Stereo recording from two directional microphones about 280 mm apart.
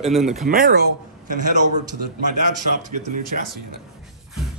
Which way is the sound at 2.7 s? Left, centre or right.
Right.